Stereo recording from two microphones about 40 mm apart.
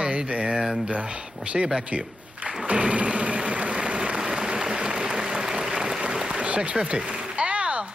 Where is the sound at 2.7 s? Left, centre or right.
Right.